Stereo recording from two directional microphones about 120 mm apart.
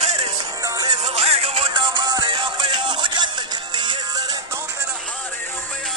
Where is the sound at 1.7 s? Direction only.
40° right (ahead or behind).